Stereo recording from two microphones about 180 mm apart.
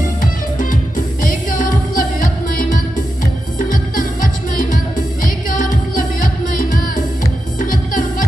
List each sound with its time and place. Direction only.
0.0 s music: 45° left (ahead or behind)